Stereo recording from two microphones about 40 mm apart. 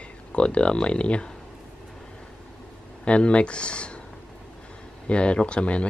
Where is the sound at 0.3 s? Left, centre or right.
Left.